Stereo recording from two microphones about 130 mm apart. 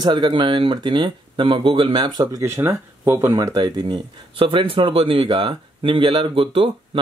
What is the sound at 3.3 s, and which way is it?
Speech, 30° right (ahead or behind).